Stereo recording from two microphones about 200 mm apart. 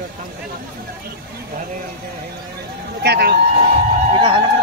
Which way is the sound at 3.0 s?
55° right (ahead or behind).